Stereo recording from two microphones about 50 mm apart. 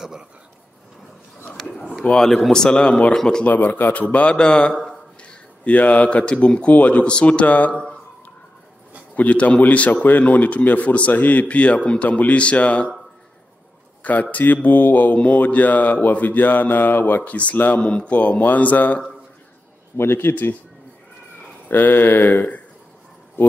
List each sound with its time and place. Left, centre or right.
1.8 s a man's voice: left
3.4 s a man's voice: left
9.1 s a man's voice: left
14.0 s a man's voice: left
20.0 s a man's voice: left
21.6 s speech: left